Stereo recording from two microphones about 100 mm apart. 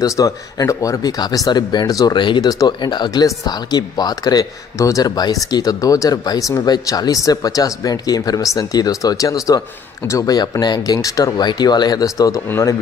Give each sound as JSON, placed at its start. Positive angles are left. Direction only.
{"t": 0.0, "sound": "speech", "side_deg": 35}
{"t": 2.1, "sound": "speech", "side_deg": 50}
{"t": 12.4, "sound": "speech", "side_deg": 25}